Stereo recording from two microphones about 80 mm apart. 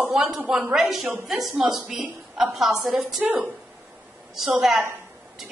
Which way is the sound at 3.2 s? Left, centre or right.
Right.